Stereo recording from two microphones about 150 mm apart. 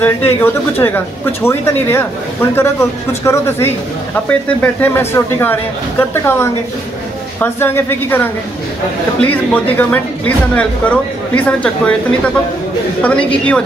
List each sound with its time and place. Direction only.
0.0 s speech: 15° left (ahead or behind)
13.0 s speech: 10° left (ahead or behind)